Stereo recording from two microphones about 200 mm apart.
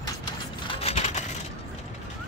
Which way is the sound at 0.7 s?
30° left (ahead or behind).